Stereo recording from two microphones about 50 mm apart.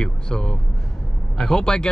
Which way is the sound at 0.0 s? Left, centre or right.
Centre.